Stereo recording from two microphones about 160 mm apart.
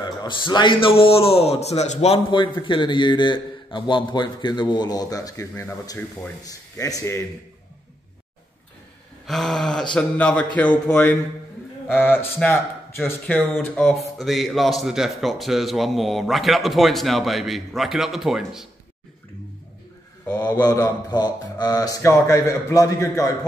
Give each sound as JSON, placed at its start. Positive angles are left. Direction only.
{"t": 0.0, "sound": "a man's voice", "side_deg": 30}
{"t": 9.2, "sound": "a man's voice", "side_deg": 0}
{"t": 20.6, "sound": "a man's voice", "side_deg": 25}